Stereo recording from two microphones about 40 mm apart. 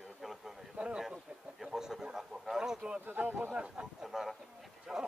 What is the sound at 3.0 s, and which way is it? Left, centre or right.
Speech, right.